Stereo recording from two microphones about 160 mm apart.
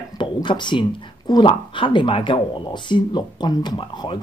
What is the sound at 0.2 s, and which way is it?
Speech, 30° left (ahead or behind).